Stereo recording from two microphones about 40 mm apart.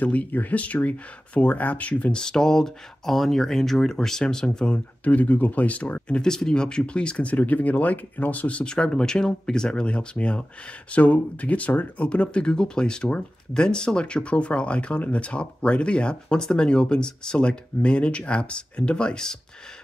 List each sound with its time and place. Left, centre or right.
0.0 s speech: left
2.1 s speech: centre
4.7 s speech: left
6.2 s speech: centre
7.3 s speech: left
8.7 s speech: centre